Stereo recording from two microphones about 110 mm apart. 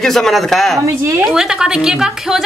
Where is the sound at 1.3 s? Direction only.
5° right (ahead or behind).